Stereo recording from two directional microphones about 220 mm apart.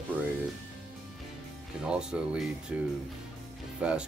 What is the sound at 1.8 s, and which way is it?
Speech, 5° right (ahead or behind).